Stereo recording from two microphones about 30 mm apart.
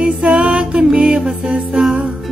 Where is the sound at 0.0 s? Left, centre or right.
Right.